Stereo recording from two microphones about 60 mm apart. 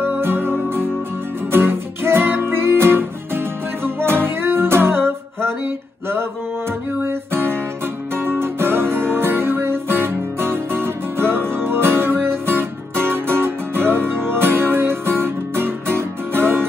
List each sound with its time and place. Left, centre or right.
0.0 s music: right
7.0 s music: right